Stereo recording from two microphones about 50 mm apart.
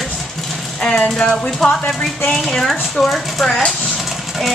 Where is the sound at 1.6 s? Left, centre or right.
Centre.